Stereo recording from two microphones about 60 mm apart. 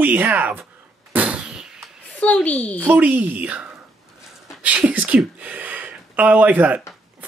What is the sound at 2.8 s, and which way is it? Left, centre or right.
Speech, right.